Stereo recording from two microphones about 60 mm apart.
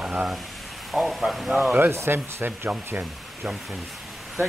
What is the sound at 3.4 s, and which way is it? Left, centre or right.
Speech, centre.